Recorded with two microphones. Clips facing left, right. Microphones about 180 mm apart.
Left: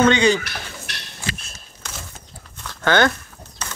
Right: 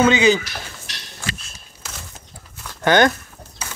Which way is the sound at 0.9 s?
60° left (ahead or behind).